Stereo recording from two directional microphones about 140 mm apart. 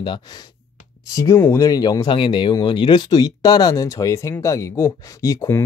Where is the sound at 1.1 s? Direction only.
20° left (ahead or behind).